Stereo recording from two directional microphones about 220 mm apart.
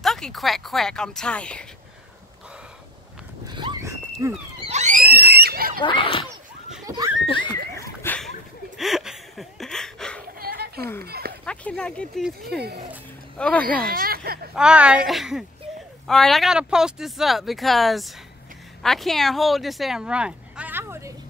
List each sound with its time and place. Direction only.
0.0 s speech: centre (ahead or behind)
3.4 s horse: 20° right (ahead or behind)
4.2 s speech: 15° right (ahead or behind)
4.6 s screaming: 30° right (ahead or behind)
5.8 s speech: 20° left (ahead or behind)
7.2 s a sound: 20° left (ahead or behind)
8.7 s laughter: centre (ahead or behind)
10.4 s a sound: 45° right (ahead or behind)
11.4 s speech: 5° left (ahead or behind)
12.4 s speech: 45° right (ahead or behind)
13.4 s speech: 5° left (ahead or behind)
13.9 s speech: 45° right (ahead or behind)
14.5 s speech: 5° right (ahead or behind)